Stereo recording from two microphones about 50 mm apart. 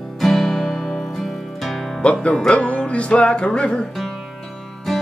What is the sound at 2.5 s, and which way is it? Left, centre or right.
Music, left.